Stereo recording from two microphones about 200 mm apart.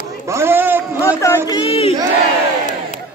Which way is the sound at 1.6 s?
30° left (ahead or behind).